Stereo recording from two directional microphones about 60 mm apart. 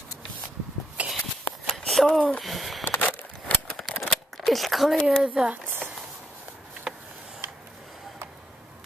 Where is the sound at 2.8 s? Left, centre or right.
Left.